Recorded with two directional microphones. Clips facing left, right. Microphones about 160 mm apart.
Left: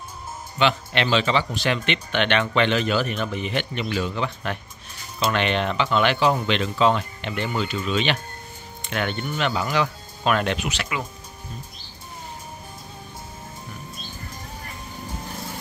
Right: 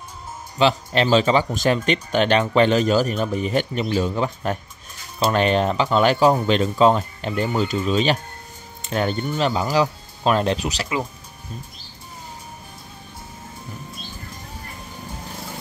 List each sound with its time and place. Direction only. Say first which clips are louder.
0.6 s speech: right 3 dB; 35° right (ahead or behind)